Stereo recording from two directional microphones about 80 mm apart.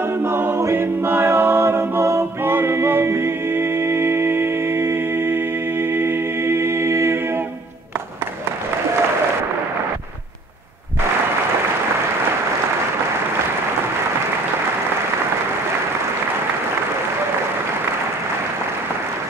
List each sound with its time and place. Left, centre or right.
0.2 s a capella: right